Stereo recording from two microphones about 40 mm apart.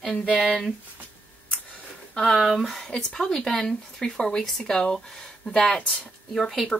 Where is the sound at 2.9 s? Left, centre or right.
Centre.